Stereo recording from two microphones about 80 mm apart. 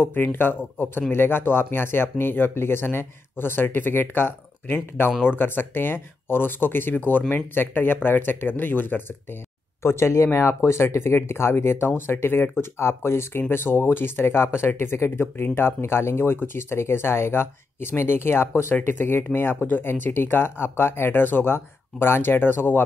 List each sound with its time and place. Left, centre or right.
0.0 s speech: left